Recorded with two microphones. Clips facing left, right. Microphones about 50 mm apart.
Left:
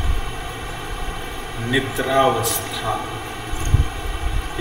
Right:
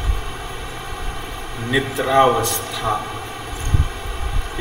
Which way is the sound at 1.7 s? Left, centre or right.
Centre.